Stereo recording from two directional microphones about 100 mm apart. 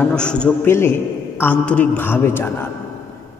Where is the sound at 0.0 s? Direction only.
10° left (ahead or behind).